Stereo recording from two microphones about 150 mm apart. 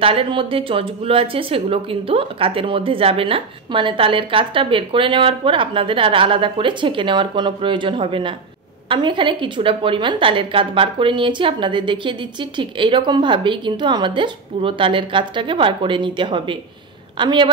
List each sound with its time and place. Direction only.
0.0 s speech: 35° right (ahead or behind)